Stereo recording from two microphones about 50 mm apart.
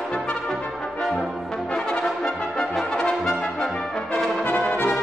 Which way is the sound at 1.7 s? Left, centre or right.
Centre.